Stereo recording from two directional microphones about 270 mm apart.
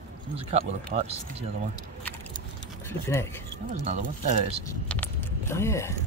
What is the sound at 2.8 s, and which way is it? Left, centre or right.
Speech, centre.